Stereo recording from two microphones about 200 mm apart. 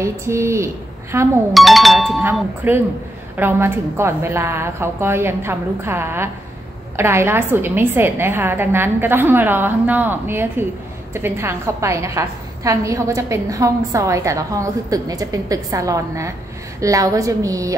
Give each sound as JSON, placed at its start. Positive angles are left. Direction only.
{"t": 0.0, "sound": "a woman's voice", "side_deg": -15}
{"t": 1.5, "sound": "a woman's voice", "side_deg": 0}